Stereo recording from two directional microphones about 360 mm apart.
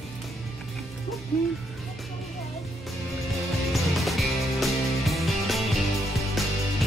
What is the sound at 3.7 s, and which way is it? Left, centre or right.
Music, centre.